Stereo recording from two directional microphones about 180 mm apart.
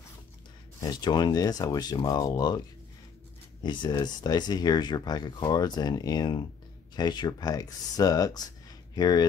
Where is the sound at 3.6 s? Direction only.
25° left (ahead or behind).